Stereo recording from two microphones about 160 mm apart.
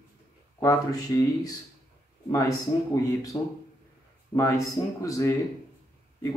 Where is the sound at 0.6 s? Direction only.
20° left (ahead or behind).